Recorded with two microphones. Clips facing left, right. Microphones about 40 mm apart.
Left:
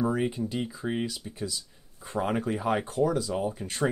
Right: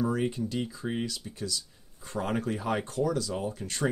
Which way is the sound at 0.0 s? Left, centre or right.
Centre.